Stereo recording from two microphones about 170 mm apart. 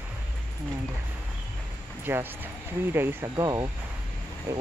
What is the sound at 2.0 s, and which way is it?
Speech, 10° right (ahead or behind).